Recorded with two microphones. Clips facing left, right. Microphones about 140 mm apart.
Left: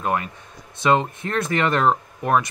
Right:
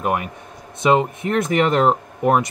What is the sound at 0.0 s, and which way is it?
Speech, 15° right (ahead or behind).